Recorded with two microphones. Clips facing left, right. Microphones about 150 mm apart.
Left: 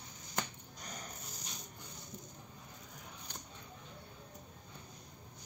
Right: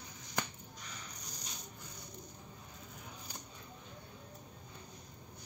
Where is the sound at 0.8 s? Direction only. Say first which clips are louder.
Left 5 dB; 45° left (ahead or behind).